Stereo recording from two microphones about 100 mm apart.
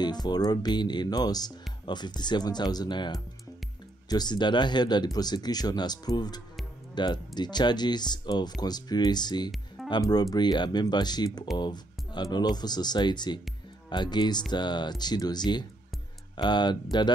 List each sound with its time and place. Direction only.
0.0 s speech: 45° left (ahead or behind)